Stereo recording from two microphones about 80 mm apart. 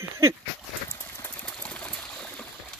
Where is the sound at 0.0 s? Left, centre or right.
Right.